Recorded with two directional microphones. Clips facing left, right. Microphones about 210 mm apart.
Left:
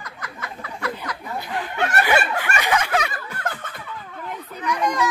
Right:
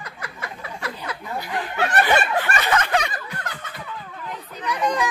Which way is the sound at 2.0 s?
10° left (ahead or behind).